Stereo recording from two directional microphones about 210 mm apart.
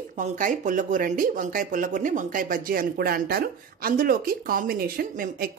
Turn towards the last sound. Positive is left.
turn(degrees=-45)  # may be behind; listen again after turning